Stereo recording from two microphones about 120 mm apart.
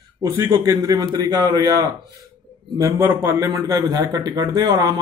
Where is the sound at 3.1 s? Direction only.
20° right (ahead or behind).